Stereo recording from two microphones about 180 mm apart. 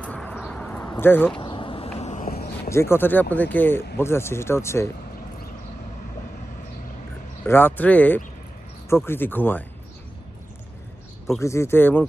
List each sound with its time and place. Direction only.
0.0 s a sound: 5° left (ahead or behind)
1.3 s a sound: 25° left (ahead or behind)
2.0 s vehicle: 40° left (ahead or behind)
2.7 s speech: 15° left (ahead or behind)
7.4 s speech: 10° left (ahead or behind)
11.3 s speech: 15° left (ahead or behind)